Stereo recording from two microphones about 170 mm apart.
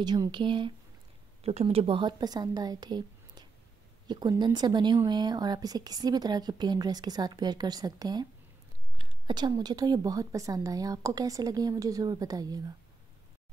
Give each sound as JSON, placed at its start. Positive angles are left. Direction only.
{"t": 0.0, "sound": "a woman's voice", "side_deg": -25}